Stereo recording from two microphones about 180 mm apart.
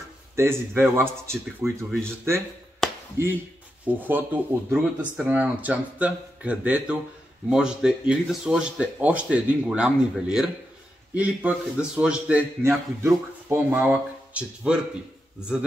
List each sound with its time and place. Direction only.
0.4 s a man's voice: 15° right (ahead or behind)
2.8 s a sound: 5° left (ahead or behind)
3.8 s a man's voice: 10° right (ahead or behind)